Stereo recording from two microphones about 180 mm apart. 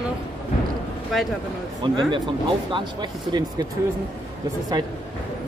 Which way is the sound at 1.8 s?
25° right (ahead or behind).